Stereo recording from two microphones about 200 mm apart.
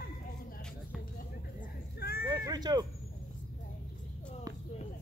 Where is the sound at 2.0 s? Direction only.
50° left (ahead or behind).